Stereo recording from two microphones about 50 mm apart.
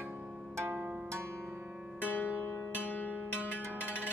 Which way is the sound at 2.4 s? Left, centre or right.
Left.